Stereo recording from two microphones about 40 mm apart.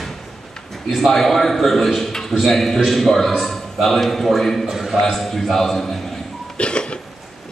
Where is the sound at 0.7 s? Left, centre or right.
Centre.